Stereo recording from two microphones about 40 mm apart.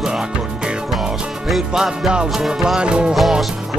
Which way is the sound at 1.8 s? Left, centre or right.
Centre.